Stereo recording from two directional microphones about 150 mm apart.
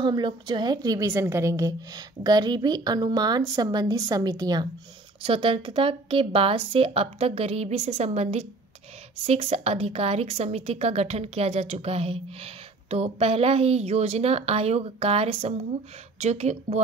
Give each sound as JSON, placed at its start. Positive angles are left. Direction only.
{"t": 0.0, "sound": "a woman's voice", "side_deg": -30}
{"t": 5.2, "sound": "a woman's voice", "side_deg": -35}